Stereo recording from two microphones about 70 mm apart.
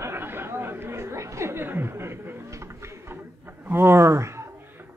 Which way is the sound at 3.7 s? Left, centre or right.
Right.